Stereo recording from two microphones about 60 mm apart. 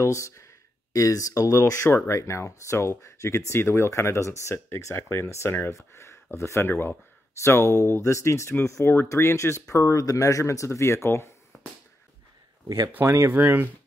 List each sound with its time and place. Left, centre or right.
0.0 s speech: left
1.9 s speech: left
2.1 s speech: left
6.7 s speech: left
7.4 s speech: left
9.9 s speech: left
11.5 s a sound: left
13.0 s speech: right
13.3 s speech: right